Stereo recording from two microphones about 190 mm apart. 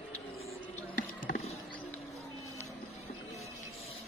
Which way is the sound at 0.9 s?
45° left (ahead or behind).